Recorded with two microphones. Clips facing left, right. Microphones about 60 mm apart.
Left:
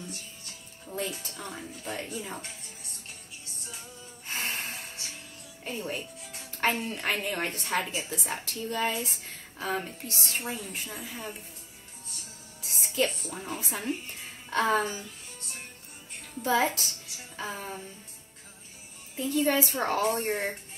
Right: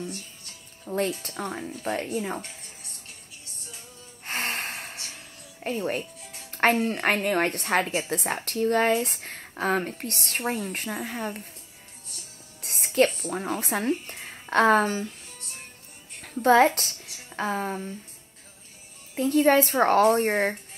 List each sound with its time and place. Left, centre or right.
0.9 s speech: right
4.3 s music: right
6.6 s speech: right
12.6 s speech: right
16.2 s a woman's voice: right
19.1 s speech: right